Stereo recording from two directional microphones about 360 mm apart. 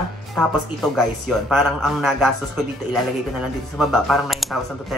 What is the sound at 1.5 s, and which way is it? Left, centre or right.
Speech, centre.